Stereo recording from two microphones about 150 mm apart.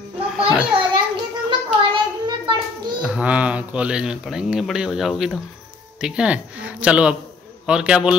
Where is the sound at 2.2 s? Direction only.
30° right (ahead or behind).